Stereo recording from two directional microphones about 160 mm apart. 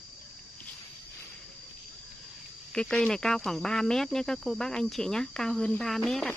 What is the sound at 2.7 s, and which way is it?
Speech, 5° left (ahead or behind).